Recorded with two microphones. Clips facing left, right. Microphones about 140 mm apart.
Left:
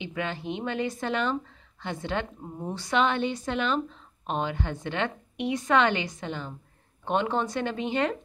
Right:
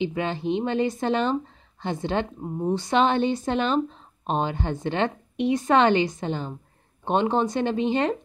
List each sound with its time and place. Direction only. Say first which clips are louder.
0.0 s a woman's voice: right 6 dB; 30° right (ahead or behind)